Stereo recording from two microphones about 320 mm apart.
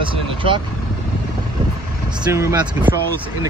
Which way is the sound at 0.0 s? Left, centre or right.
Centre.